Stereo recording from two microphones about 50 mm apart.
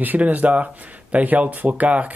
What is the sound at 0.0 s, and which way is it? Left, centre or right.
Speech, right.